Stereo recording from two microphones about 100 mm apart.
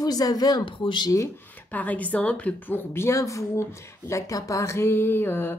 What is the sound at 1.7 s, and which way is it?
A woman's voice, 15° left (ahead or behind).